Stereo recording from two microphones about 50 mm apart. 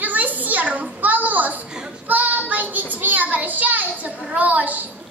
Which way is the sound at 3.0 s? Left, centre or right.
Right.